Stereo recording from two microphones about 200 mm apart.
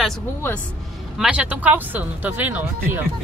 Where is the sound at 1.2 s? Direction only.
5° right (ahead or behind).